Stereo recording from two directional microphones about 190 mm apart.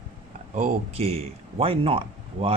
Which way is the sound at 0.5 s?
35° right (ahead or behind).